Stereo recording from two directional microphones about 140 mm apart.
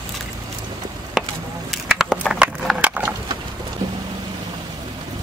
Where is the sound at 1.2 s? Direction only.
Centre (ahead or behind).